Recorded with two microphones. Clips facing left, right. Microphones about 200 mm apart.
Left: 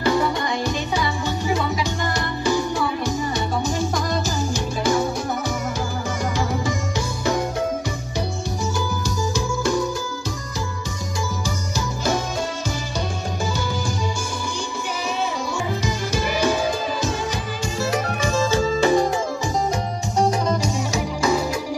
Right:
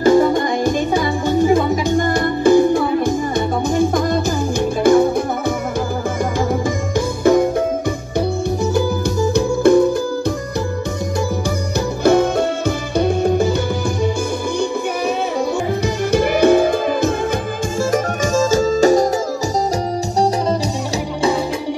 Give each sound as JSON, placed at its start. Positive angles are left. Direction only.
{"t": 0.0, "sound": "music", "side_deg": -45}
{"t": 7.3, "sound": "music", "side_deg": -55}
{"t": 8.7, "sound": "music", "side_deg": -60}
{"t": 12.0, "sound": "music", "side_deg": -60}
{"t": 16.1, "sound": "music", "side_deg": -60}
{"t": 17.9, "sound": "music", "side_deg": -45}